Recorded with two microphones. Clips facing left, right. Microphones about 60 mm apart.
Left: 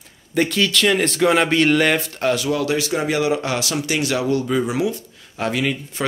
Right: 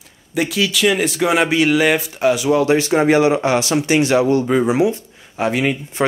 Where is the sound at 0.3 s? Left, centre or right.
Centre.